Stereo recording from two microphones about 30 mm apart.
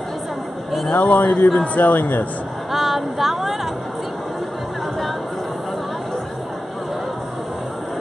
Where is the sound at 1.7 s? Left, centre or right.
Left.